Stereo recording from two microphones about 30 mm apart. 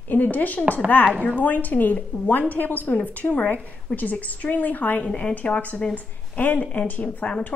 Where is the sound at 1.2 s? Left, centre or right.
Left.